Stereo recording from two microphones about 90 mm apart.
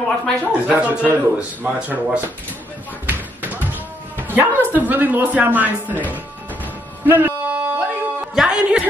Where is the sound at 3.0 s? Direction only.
20° right (ahead or behind).